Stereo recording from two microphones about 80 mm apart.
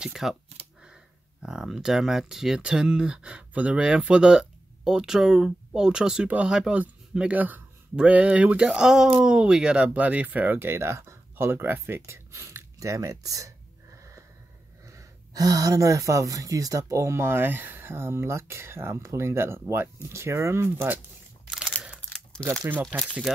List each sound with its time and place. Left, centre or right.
0.0 s speech: centre
1.4 s speech: centre
8.6 s speech: centre; by 13.5 s right
13.9 s wheeze: right
14.9 s speech: right
21.5 s a sound: centre
22.4 s speech: right
23.3 s speech: centre